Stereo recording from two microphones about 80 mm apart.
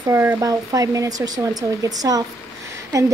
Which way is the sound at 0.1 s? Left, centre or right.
Right.